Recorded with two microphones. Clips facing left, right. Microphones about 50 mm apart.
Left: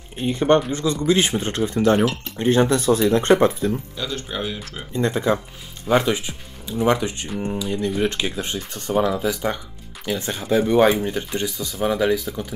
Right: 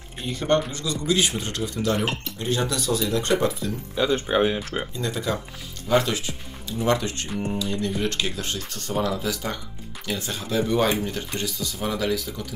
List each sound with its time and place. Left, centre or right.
0.2 s speech: left
3.9 s speech: right
4.9 s speech: left
7.2 s speech: centre
7.5 s speech: centre